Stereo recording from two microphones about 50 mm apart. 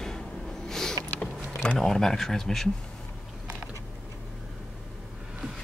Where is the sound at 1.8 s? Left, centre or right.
Centre.